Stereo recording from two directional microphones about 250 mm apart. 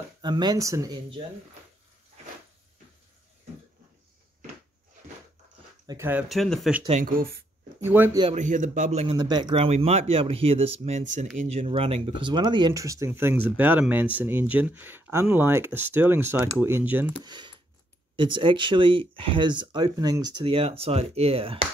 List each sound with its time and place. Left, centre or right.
0.2 s speech: centre
5.9 s speech: centre
6.8 s speech: right
7.8 s speech: centre
8.2 s speech: right; by 17.3 s centre
17.3 s a sound: centre
18.1 s speech: centre